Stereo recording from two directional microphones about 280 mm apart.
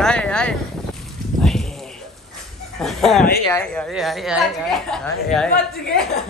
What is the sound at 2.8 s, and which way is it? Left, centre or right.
Speech, centre.